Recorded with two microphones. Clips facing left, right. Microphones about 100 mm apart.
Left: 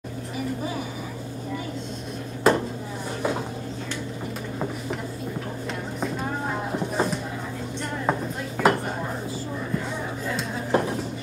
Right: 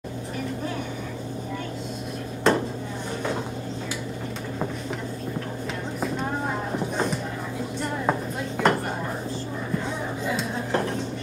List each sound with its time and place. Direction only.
2.4 s dishes: 5° left (ahead or behind)
5.9 s a sound: centre (ahead or behind)
8.1 s dishes: centre (ahead or behind)
10.7 s music: 5° left (ahead or behind)